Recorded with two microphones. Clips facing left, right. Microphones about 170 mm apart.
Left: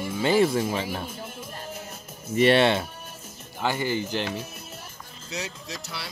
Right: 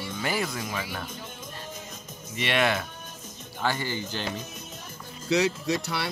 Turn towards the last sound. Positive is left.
turn(degrees=-65)  # may be behind; listen again after turning